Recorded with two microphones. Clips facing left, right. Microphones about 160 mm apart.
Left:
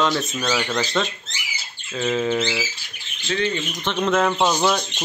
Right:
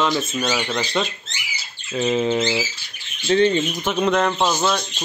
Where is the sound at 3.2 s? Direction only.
30° right (ahead or behind).